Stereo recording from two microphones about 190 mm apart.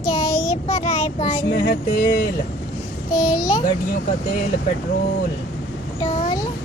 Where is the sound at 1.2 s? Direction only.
45° left (ahead or behind).